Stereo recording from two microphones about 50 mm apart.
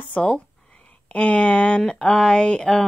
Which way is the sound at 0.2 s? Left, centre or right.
Left.